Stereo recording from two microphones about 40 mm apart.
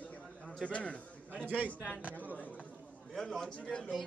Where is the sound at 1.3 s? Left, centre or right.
Right.